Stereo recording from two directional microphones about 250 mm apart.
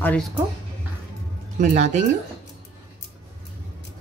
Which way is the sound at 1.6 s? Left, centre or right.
Right.